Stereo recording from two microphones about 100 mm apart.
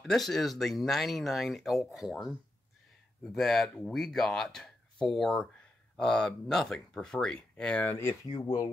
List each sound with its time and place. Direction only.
0.0 s speech: centre (ahead or behind)
7.8 s speech: 25° left (ahead or behind)
8.3 s speech: 55° left (ahead or behind)